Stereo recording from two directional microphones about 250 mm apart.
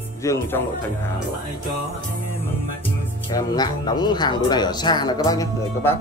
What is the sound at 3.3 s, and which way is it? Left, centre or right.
Speech, centre.